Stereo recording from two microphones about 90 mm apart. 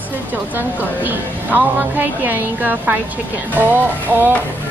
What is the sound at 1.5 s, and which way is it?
A woman's voice, 20° right (ahead or behind).